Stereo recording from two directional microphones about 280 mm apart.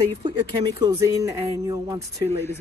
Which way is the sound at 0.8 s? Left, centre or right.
Centre.